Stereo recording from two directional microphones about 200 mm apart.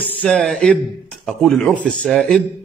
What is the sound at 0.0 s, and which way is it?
A man's voice, 10° left (ahead or behind).